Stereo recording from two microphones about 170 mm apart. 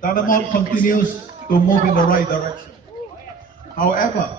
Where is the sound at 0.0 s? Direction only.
55° left (ahead or behind).